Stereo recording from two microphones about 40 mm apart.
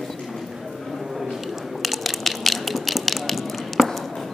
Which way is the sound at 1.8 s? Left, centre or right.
Centre.